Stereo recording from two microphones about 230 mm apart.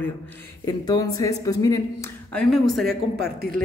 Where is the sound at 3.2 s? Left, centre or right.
Right.